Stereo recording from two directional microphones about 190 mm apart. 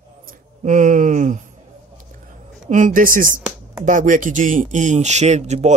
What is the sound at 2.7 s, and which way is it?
Speech, 45° right (ahead or behind).